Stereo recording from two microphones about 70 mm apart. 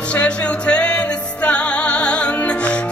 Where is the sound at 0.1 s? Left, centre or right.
Centre.